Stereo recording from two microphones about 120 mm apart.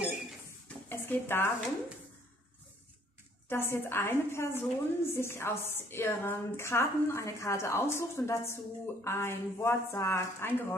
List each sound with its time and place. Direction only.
0.8 s stir: 15° left (ahead or behind)
3.4 s a woman's voice: 20° left (ahead or behind)